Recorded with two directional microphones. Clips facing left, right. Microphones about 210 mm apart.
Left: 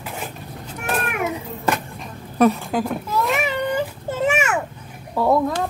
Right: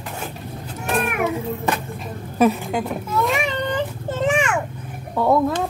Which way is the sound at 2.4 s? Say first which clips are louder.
Left 1 dB; centre (ahead or behind).